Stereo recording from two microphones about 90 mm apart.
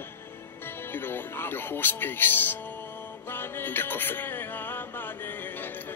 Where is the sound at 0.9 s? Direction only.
25° left (ahead or behind).